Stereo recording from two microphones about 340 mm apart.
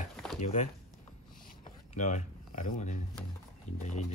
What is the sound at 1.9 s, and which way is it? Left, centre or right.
Speech, left.